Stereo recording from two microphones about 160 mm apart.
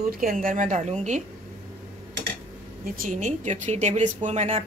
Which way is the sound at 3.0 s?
50° right (ahead or behind).